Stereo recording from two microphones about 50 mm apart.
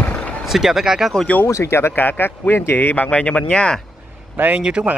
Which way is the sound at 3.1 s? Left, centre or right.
Left.